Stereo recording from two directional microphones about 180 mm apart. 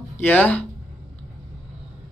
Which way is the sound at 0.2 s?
10° left (ahead or behind).